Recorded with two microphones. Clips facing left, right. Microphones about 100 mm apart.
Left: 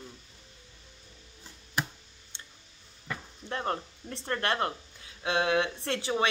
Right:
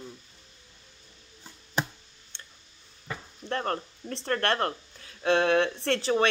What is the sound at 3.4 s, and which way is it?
Speech, 15° left (ahead or behind).